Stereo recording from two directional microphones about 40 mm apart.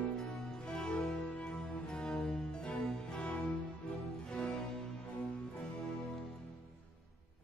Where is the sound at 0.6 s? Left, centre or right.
Left.